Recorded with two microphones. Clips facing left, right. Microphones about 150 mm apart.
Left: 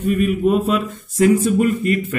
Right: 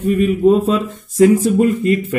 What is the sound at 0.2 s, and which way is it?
Speech, 30° right (ahead or behind).